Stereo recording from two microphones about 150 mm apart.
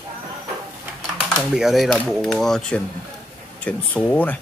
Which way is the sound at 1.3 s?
Centre (ahead or behind).